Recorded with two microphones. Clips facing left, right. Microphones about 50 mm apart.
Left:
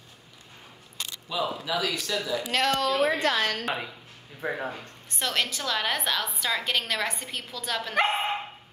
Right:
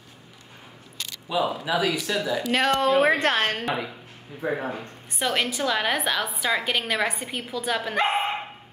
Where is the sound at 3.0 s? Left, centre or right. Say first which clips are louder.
Right 3 dB; right.